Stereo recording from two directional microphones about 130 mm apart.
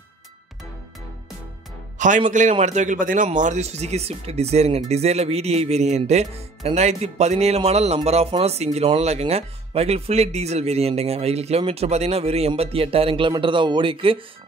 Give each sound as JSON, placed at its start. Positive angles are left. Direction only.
{"t": 2.0, "sound": "speech", "side_deg": -75}
{"t": 3.3, "sound": "speech", "side_deg": -65}